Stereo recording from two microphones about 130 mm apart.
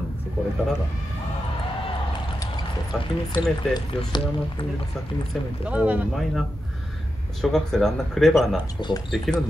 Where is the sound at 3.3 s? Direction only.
35° left (ahead or behind).